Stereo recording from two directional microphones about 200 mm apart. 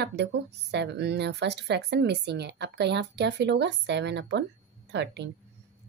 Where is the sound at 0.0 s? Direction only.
60° right (ahead or behind).